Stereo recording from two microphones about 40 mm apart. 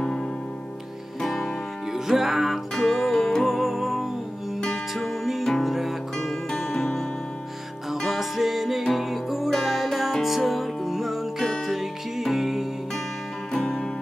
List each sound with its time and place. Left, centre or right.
1.2 s music: centre
1.9 s music: centre
2.7 s music: centre
13.5 s music: centre